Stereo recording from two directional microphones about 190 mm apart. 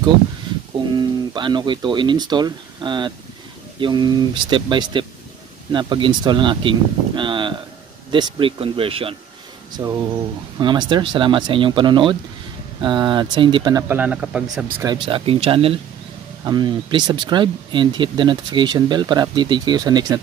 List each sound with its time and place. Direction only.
0.9 s speech: 25° right (ahead or behind)
13.8 s speech: 10° right (ahead or behind)
14.8 s speech: 25° right (ahead or behind)